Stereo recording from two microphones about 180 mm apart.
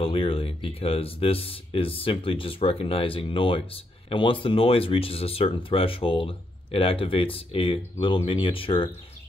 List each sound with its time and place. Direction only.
0.0 s speech: 30° left (ahead or behind)